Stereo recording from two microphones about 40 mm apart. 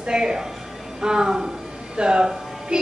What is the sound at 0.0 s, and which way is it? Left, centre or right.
A woman's voice, centre.